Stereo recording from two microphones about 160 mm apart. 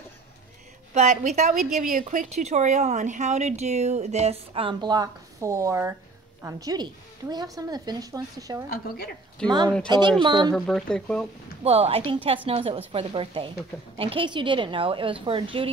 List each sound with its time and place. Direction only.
0.9 s a woman's voice: 45° right (ahead or behind); by 8.6 s 20° right (ahead or behind)
8.6 s a woman's voice: 75° left (ahead or behind)
9.4 s speech: 5° left (ahead or behind)
9.8 s a woman's voice: 30° right (ahead or behind)
10.5 s speech: centre (ahead or behind)
11.6 s a woman's voice: 40° right (ahead or behind)